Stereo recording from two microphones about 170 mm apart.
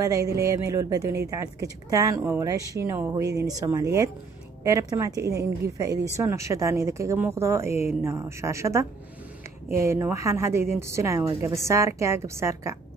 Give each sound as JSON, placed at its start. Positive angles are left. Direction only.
{"t": 0.0, "sound": "a woman's voice", "side_deg": -20}